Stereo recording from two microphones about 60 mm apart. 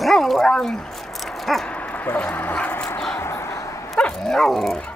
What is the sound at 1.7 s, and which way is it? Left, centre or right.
Dog, left.